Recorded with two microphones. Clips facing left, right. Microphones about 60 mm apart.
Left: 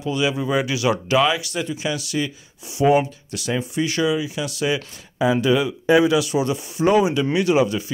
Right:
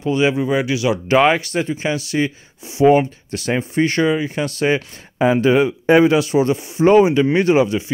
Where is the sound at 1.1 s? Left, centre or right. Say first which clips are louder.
Right 7 dB; right.